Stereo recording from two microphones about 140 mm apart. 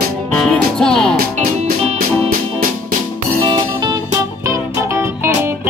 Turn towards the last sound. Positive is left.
turn(degrees=-20)  # may be behind; listen again after turning